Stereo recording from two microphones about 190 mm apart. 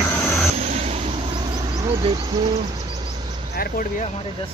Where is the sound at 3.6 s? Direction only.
50° left (ahead or behind).